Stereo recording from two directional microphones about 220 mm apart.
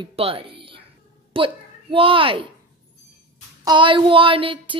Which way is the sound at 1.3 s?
25° right (ahead or behind).